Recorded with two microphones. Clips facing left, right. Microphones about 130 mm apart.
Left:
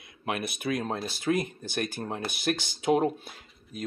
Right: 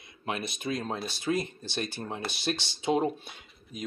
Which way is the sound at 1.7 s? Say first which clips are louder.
Left 3 dB; 50° left (ahead or behind).